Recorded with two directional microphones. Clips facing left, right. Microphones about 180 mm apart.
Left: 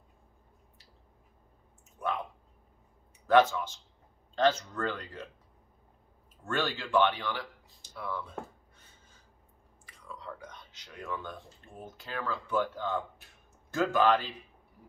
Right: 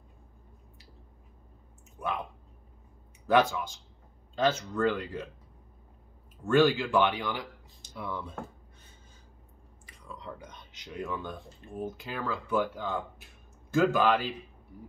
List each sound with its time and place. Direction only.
3.3 s speech: 10° right (ahead or behind)
6.4 s speech: 10° right (ahead or behind)
9.8 s a sound: 20° right (ahead or behind)
11.8 s speech: 10° right (ahead or behind)